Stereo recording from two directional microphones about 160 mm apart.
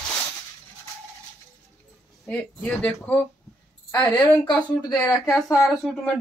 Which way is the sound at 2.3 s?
5° left (ahead or behind).